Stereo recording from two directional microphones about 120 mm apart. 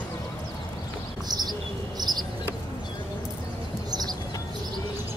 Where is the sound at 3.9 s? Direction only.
35° right (ahead or behind).